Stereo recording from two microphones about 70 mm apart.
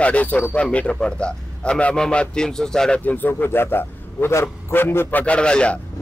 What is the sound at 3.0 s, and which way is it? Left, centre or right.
A man's voice, left.